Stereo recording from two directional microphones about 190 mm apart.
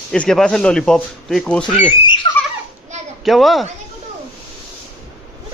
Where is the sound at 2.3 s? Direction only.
20° left (ahead or behind).